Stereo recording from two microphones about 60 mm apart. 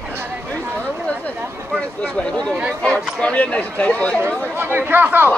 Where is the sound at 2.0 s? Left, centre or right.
Centre.